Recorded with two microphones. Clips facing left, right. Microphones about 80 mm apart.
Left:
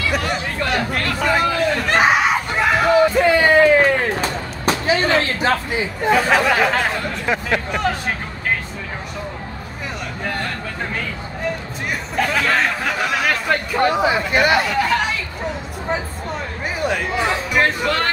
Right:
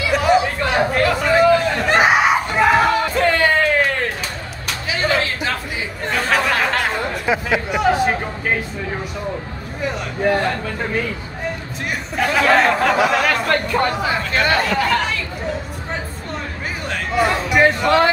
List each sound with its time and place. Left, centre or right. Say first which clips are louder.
0.0 s chatter: right 6 dB; centre
0.7 s speech: right 9 dB; centre
1.2 s a sound: right 3 dB; centre
3.0 s a sound: left 3 dB; centre
4.2 s music: left 5 dB; left
6.0 s chatter: left 3 dB; centre
7.2 s speech: right 1 dB; centre
10.2 s speech: right 9 dB; centre
12.2 s speech: right 4 dB; centre
13.9 s speech: left 3 dB; centre
17.1 s speech: right 3 dB; centre